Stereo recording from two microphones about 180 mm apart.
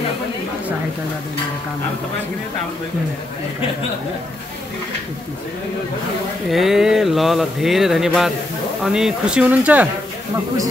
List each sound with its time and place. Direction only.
6.5 s speech: centre (ahead or behind)